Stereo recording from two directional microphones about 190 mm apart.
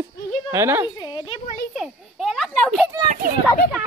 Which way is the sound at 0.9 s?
25° left (ahead or behind).